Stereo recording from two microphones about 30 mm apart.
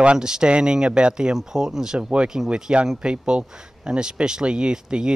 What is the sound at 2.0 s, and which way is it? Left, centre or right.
Speech, right.